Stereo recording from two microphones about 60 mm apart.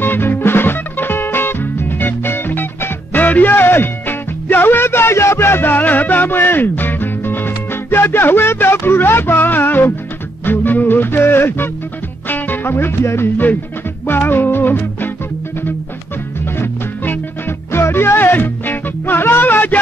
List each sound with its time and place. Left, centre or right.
0.0 s music: left
16.5 s music: left